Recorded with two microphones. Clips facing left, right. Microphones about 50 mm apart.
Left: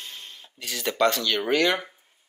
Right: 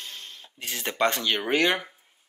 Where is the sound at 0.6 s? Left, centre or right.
Right.